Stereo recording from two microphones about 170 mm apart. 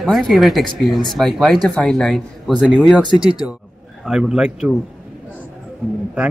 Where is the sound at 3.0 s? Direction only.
30° right (ahead or behind).